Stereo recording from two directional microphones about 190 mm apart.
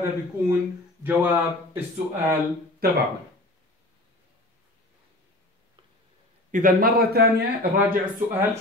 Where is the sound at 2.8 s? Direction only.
55° right (ahead or behind).